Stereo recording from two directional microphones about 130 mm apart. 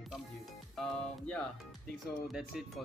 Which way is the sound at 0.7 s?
5° left (ahead or behind).